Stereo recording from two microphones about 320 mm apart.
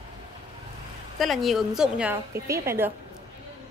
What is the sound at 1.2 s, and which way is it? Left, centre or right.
A woman's voice, centre.